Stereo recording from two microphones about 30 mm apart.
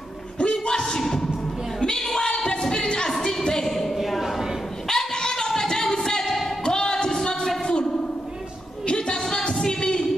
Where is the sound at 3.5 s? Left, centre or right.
Centre.